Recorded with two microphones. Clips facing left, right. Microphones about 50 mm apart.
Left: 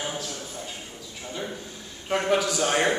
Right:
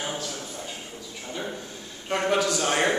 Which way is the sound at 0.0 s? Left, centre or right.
Centre.